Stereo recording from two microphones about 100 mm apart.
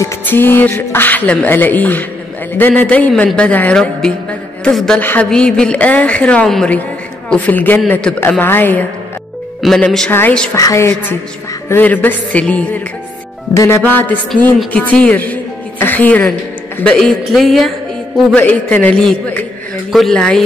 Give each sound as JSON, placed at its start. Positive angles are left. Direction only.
{"t": 0.3, "sound": "a woman's voice", "side_deg": 20}
{"t": 9.8, "sound": "a woman's voice", "side_deg": 10}
{"t": 10.5, "sound": "a woman's voice", "side_deg": 30}
{"t": 11.7, "sound": "a woman's voice", "side_deg": 15}
{"t": 13.5, "sound": "a woman's voice", "side_deg": 35}
{"t": 13.8, "sound": "a woman's voice", "side_deg": 15}
{"t": 16.8, "sound": "speech", "side_deg": 5}
{"t": 18.3, "sound": "a woman's voice", "side_deg": 15}